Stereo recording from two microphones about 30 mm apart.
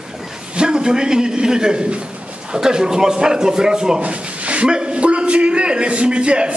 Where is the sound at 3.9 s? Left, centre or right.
Right.